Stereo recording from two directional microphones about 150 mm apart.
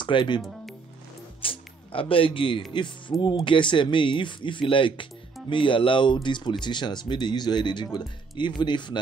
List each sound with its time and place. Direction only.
0.0 s speech: 30° left (ahead or behind)
1.4 s speech: 35° left (ahead or behind)